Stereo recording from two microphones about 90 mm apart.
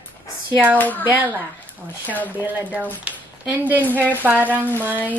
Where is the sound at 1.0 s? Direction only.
25° right (ahead or behind).